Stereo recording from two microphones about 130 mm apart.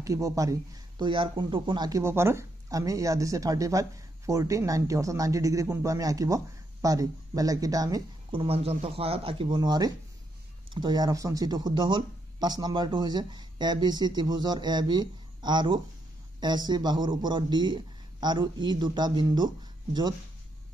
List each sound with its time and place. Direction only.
0.0 s speech: 25° right (ahead or behind)
8.3 s speech: 45° right (ahead or behind)